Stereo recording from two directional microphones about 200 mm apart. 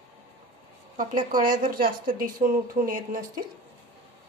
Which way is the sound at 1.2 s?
40° right (ahead or behind).